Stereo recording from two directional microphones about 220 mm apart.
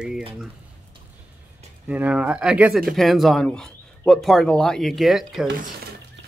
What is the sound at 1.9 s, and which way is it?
Speech, 5° right (ahead or behind).